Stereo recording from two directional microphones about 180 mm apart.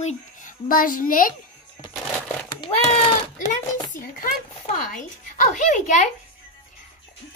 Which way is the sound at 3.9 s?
55° left (ahead or behind).